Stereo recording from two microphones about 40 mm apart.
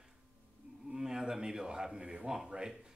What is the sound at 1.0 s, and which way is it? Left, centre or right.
A man's voice, centre.